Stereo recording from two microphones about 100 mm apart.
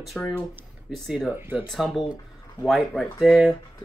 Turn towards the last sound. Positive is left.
turn(degrees=0)  # may be behind; listen again after turning